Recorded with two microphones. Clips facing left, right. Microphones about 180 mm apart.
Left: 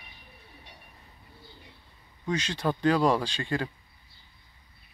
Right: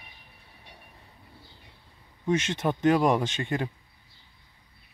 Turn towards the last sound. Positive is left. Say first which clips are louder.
# right 1 dB
turn(degrees=-20)  # may be behind; listen again after turning